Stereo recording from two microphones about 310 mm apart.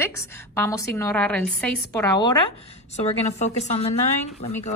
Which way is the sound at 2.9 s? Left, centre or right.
Left.